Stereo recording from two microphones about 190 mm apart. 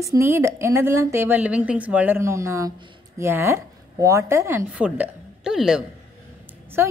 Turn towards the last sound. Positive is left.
turn(degrees=-10)  # may be behind; listen again after turning